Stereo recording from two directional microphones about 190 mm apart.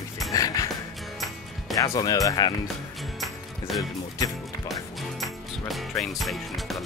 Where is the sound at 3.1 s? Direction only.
Centre (ahead or behind).